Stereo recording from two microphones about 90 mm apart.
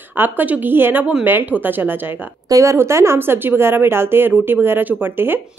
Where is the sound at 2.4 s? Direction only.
40° right (ahead or behind).